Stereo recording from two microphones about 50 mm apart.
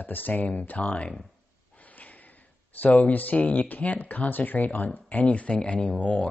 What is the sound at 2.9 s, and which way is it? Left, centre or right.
Speech, left.